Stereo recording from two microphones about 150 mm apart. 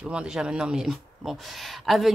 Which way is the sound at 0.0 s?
5° right (ahead or behind).